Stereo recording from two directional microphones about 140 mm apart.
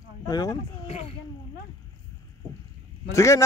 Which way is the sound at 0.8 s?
50° left (ahead or behind).